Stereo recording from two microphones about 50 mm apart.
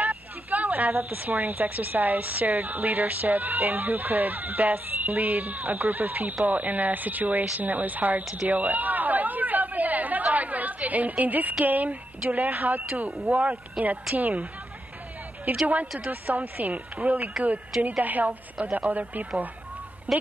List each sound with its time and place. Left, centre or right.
0.0 s speech: right
8.5 s chatter: right
11.6 s speech: right
15.6 s speech: right